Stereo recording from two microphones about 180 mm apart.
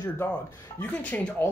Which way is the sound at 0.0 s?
10° left (ahead or behind).